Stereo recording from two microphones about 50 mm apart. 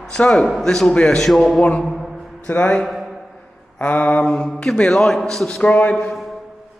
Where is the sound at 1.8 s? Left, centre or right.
Centre.